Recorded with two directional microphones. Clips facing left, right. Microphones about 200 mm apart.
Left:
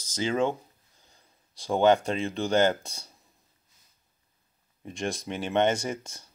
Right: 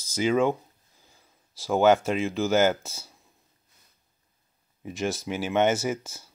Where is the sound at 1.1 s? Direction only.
5° right (ahead or behind).